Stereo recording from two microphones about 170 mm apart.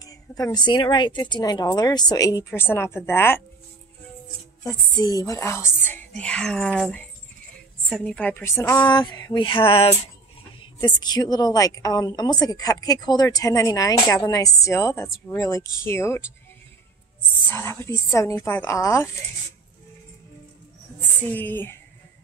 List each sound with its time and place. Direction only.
0.0 s a woman's voice: 20° left (ahead or behind)
4.6 s a woman's voice: 25° left (ahead or behind)
17.5 s speech: 15° left (ahead or behind)
21.3 s speech: 10° left (ahead or behind)